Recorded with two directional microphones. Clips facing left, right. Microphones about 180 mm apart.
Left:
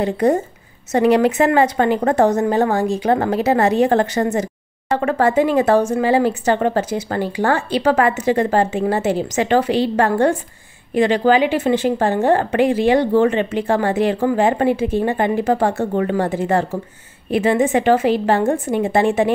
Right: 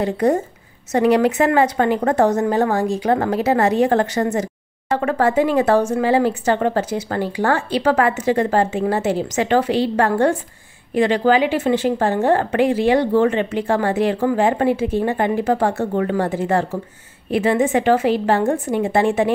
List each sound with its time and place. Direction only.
0.0 s speech: 20° left (ahead or behind)